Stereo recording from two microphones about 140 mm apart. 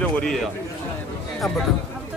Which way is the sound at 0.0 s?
5° left (ahead or behind).